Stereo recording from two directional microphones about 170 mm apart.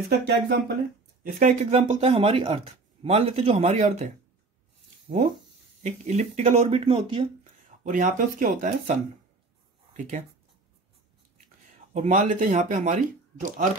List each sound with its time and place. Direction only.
0.1 s speech: 90° right
1.2 s speech: 50° right (ahead or behind)
5.8 s speech: 45° right (ahead or behind)
7.8 s speech: 50° right (ahead or behind)
11.4 s speech: 45° right (ahead or behind)